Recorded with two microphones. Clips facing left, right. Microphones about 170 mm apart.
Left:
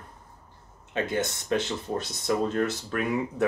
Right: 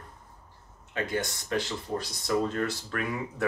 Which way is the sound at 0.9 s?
20° left (ahead or behind).